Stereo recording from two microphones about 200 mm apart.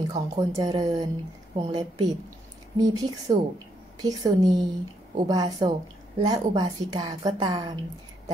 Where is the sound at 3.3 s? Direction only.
20° right (ahead or behind).